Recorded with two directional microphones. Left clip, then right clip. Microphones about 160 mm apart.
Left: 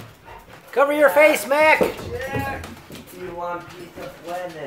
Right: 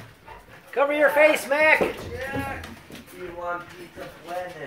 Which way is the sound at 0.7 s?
25° left (ahead or behind).